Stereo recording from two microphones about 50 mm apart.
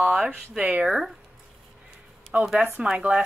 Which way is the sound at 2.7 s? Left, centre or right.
Centre.